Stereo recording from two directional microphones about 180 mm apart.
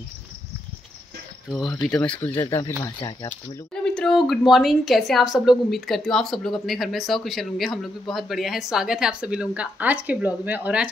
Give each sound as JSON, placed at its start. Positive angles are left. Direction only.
{"t": 1.5, "sound": "a woman's voice", "side_deg": 0}
{"t": 3.8, "sound": "a woman's voice", "side_deg": 5}